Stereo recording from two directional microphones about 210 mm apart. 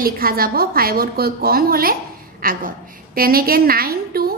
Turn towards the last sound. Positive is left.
turn(degrees=-45)  # may be behind; listen again after turning